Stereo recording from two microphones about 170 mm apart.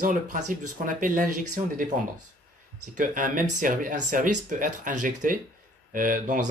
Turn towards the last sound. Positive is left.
turn(degrees=-50)  # may be behind; listen again after turning